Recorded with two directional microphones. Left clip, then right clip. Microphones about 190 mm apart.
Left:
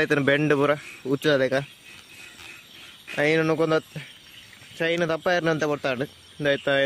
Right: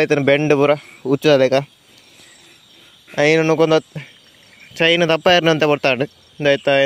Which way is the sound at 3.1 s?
30° right (ahead or behind).